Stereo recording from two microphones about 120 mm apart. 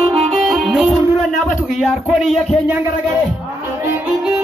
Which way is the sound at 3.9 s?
10° right (ahead or behind).